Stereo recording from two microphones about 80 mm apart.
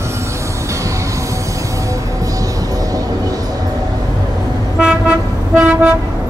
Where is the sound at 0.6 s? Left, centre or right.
Right.